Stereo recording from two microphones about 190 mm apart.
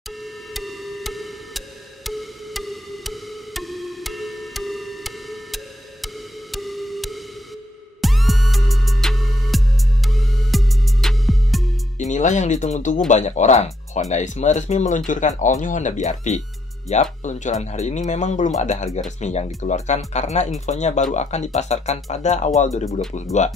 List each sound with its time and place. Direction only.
0.6 s music: centre (ahead or behind)
12.0 s speech: 40° left (ahead or behind)